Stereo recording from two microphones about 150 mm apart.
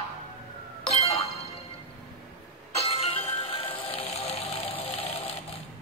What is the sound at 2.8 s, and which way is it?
Music, 40° left (ahead or behind).